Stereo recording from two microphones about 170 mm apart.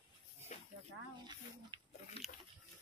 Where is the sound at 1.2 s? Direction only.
25° right (ahead or behind).